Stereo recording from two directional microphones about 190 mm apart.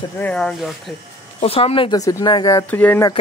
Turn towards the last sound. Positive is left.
turn(degrees=15)  # may be behind; listen again after turning